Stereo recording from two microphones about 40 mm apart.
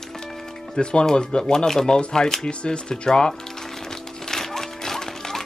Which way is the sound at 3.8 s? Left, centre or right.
Centre.